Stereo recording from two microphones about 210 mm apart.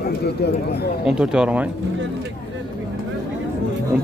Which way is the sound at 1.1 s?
5° right (ahead or behind).